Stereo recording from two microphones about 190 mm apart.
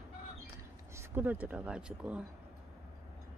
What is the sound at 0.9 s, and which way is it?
Speech, 10° right (ahead or behind).